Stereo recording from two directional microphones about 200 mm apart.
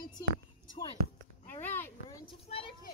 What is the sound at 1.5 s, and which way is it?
Speech, 10° left (ahead or behind).